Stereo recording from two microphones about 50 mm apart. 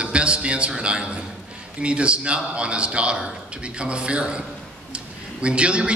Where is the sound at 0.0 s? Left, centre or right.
Right.